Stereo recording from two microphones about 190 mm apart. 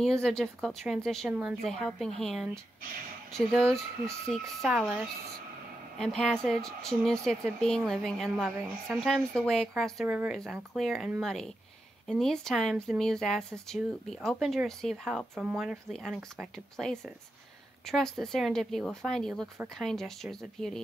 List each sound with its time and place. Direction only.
0.0 s speech: centre (ahead or behind)